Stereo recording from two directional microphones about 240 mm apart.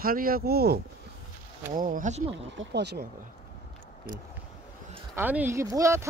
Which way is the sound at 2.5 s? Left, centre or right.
Right.